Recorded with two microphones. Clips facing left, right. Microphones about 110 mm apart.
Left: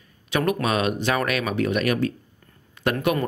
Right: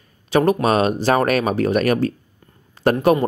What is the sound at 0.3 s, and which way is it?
A man's voice, 35° right (ahead or behind).